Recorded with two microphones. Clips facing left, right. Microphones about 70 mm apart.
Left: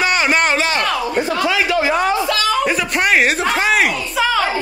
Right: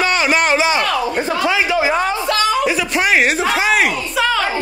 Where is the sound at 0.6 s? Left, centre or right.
Centre.